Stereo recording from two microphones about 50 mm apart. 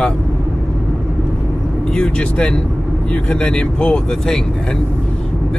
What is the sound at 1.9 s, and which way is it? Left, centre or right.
Speech, centre.